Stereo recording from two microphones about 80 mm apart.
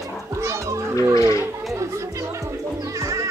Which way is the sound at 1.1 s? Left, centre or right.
Left.